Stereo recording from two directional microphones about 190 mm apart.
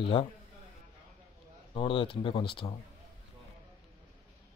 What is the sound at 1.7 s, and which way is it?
Speech, 25° left (ahead or behind).